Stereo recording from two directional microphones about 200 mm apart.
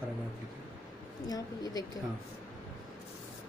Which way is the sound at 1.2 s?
20° left (ahead or behind).